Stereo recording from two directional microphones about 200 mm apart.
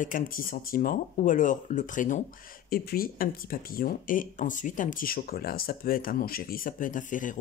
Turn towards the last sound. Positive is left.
turn(degrees=40)  # may be behind; listen again after turning